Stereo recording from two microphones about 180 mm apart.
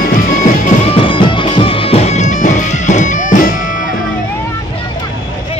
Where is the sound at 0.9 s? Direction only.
25° left (ahead or behind); by 3.6 s 45° left (ahead or behind).